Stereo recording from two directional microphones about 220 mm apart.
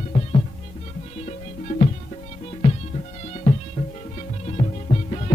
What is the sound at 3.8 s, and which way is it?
Music, 30° left (ahead or behind).